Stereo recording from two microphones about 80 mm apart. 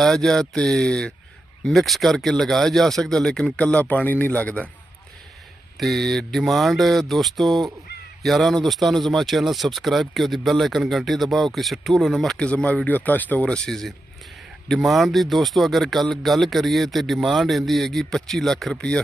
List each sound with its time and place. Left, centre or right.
0.0 s speech: centre
1.6 s speech: centre
3.5 s speech: centre
5.8 s speech: centre